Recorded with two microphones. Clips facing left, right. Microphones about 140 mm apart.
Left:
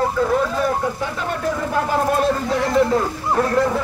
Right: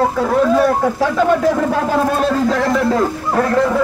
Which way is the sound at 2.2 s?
90° right.